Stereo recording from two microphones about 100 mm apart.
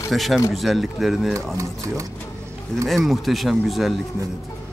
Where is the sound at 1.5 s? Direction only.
30° right (ahead or behind).